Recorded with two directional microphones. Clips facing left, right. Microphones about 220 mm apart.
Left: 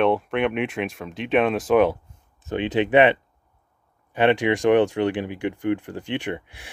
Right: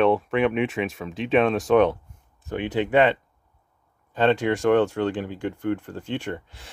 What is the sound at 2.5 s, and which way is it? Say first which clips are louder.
Speech: left 3 dB; 20° left (ahead or behind).